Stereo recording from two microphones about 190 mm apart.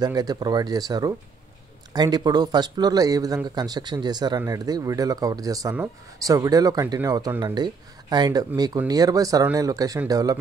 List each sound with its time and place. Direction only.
0.0 s speech: 20° right (ahead or behind)